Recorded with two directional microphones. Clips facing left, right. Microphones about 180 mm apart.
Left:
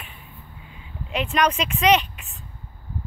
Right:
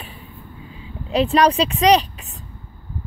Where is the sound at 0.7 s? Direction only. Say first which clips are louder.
Right 5 dB; 35° right (ahead or behind).